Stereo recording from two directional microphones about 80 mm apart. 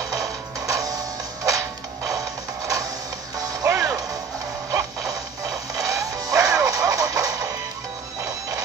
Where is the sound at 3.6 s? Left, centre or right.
Right.